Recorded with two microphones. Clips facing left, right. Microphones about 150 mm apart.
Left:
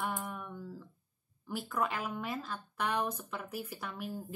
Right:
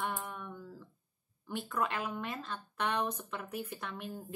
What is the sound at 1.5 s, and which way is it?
Speech, 5° left (ahead or behind).